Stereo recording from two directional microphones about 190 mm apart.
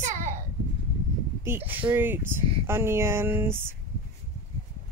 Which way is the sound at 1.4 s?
10° right (ahead or behind).